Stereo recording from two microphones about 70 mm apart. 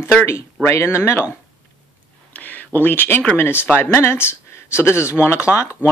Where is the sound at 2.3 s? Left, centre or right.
Left.